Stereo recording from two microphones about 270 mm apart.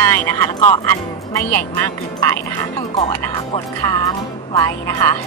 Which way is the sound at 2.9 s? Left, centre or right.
Centre.